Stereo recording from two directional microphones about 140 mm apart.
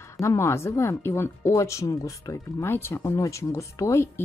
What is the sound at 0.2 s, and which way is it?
Speech, 20° left (ahead or behind).